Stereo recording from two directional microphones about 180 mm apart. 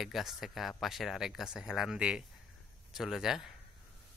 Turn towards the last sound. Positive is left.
turn(degrees=0)  # may be behind; listen again after turning